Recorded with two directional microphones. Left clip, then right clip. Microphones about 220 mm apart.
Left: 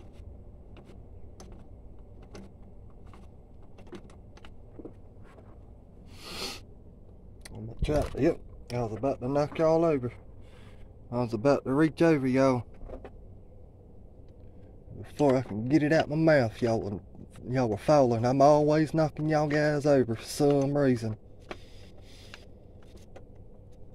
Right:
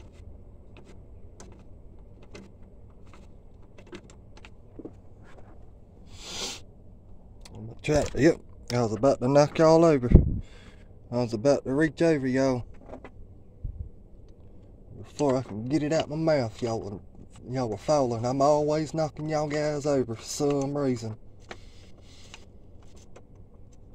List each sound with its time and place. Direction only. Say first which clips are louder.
6.1 s a sound: right 2 dB; centre (ahead or behind)
7.9 s speech: right 4 dB; 30° right (ahead or behind)
11.1 s speech: right 2 dB; 10° right (ahead or behind); by 12.6 s 10° left (ahead or behind)
15.2 s speech: left 1 dB; 10° left (ahead or behind)